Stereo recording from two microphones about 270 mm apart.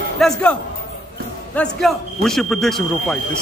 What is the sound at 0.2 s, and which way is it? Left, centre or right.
A man's voice, centre.